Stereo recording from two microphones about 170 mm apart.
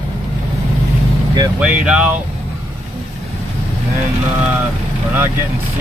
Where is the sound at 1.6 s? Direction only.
5° right (ahead or behind).